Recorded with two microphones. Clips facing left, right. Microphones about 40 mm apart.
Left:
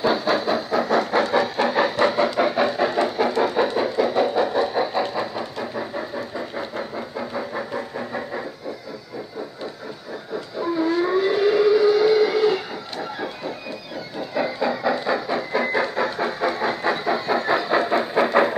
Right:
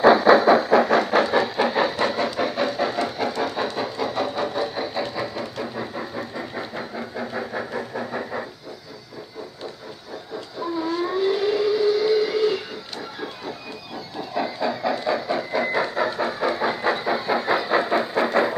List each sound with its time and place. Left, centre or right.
0.0 s train: right
1.2 s train: centre
6.7 s a sound: centre
10.6 s civil defense siren: centre
14.3 s train: centre
18.1 s train: centre